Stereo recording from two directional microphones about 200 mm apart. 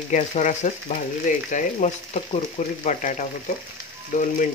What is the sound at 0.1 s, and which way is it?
Speech, 40° left (ahead or behind).